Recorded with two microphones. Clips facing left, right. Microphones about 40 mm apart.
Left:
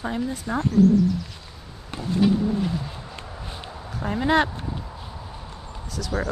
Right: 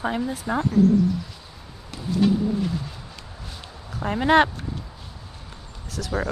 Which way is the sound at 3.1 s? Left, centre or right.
Left.